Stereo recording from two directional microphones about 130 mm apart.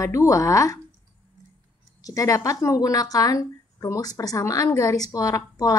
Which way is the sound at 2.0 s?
25° left (ahead or behind).